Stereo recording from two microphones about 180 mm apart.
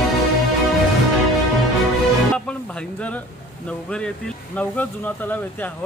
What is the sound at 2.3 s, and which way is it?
Music, 5° left (ahead or behind).